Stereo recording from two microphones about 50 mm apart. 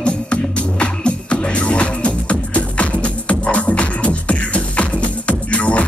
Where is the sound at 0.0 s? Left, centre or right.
Left.